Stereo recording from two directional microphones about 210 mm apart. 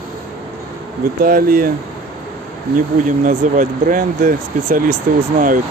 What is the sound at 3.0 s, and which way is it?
Speech, 40° right (ahead or behind).